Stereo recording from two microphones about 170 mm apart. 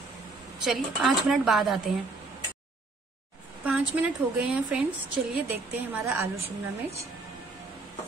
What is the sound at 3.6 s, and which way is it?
A woman's voice, 10° right (ahead or behind).